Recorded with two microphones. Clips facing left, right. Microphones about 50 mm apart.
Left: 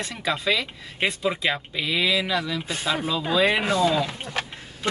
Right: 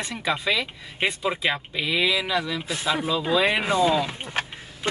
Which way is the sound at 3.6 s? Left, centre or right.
Right.